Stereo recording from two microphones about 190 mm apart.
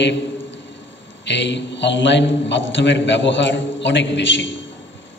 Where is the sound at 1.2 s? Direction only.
70° left (ahead or behind).